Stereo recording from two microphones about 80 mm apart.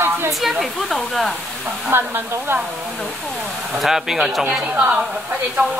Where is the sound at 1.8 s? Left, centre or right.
Right.